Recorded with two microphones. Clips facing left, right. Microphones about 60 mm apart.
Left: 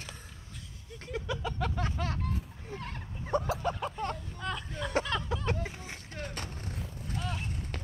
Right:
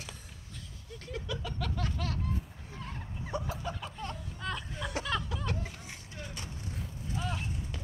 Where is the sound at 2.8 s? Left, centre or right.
Left.